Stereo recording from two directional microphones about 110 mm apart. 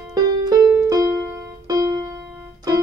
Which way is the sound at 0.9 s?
25° right (ahead or behind).